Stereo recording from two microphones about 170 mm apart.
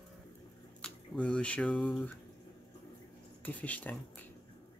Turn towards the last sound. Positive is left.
turn(degrees=10)  # may be behind; listen again after turning